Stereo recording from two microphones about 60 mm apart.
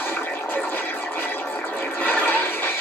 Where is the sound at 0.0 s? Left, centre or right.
Left.